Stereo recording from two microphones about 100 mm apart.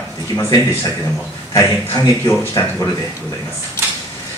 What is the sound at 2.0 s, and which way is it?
Speech, 25° left (ahead or behind).